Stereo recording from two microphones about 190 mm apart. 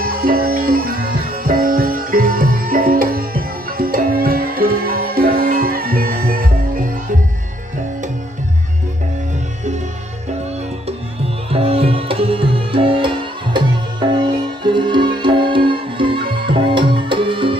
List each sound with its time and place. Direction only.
0.0 s music: 50° right (ahead or behind)
11.5 s music: 30° right (ahead or behind)